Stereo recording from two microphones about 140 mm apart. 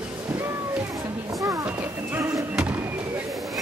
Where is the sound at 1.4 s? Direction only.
20° right (ahead or behind).